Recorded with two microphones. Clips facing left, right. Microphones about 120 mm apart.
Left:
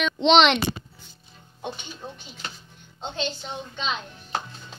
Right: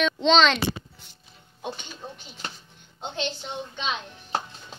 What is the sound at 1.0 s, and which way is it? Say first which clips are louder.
Music: left 2 dB; 75° right (ahead or behind).